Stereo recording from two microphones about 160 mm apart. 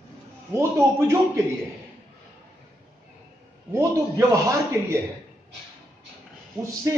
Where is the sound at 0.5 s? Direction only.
15° right (ahead or behind).